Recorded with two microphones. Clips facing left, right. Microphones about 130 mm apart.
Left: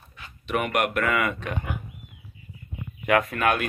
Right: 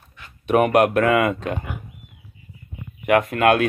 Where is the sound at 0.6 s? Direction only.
35° right (ahead or behind).